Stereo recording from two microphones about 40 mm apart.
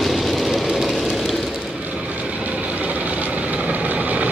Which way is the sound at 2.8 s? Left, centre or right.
Right.